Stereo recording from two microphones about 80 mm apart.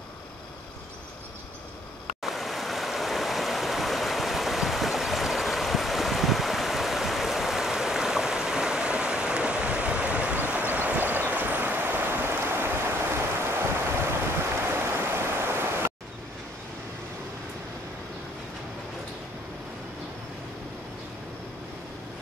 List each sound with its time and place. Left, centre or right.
2.2 s stream: centre; by 10.6 s right
10.7 s vehicle: right
14.9 s a sound: right